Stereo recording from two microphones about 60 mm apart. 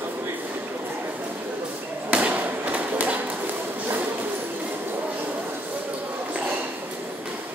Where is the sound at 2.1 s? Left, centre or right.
Right.